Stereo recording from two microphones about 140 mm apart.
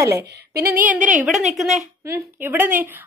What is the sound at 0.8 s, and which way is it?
Speech, 70° right (ahead or behind).